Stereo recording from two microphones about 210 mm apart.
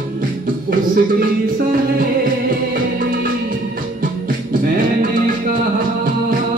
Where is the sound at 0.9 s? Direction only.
40° right (ahead or behind).